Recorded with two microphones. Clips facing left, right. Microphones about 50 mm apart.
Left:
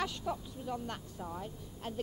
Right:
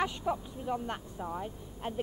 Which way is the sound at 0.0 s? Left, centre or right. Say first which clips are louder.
Right 4 dB; right.